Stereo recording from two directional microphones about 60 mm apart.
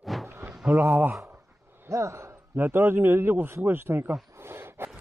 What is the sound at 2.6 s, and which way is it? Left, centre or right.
A man's voice, right.